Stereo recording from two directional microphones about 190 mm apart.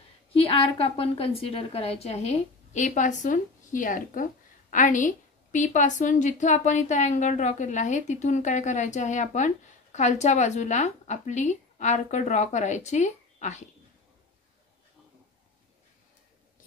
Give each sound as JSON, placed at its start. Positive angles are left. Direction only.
{"t": 0.3, "sound": "a woman's voice", "side_deg": 30}